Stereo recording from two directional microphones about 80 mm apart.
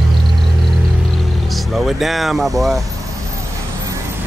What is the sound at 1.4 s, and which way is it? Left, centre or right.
Speech, centre.